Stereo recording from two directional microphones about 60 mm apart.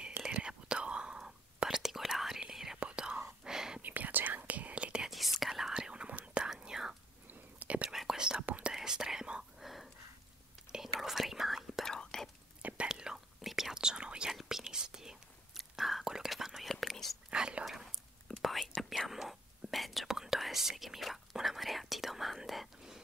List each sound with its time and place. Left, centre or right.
0.2 s whispering: centre
2.8 s whispering: centre
3.8 s whispering: right
5.1 s whispering: centre
7.5 s whispering: right
7.9 s whispering: centre
8.5 s whispering: right
8.7 s whispering: centre
10.7 s whispering: centre
11.9 s whispering: centre
12.8 s whispering: centre
17.3 s whispering: centre
18.3 s whispering: centre